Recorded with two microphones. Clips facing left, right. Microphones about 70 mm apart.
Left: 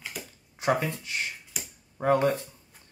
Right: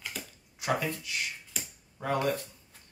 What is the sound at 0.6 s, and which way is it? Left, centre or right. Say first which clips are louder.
Speech: left 4 dB; left.